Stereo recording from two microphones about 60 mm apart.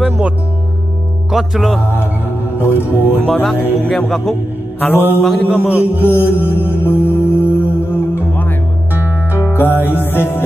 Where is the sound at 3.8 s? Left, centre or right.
Centre.